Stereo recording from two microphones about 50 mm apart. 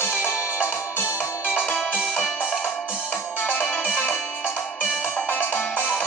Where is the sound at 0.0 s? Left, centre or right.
Left.